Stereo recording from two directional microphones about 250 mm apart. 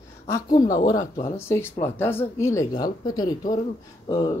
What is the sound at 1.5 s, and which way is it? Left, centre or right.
Speech, centre.